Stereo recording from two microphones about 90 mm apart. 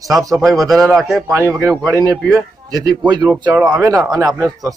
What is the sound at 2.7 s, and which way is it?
Speech, 45° right (ahead or behind).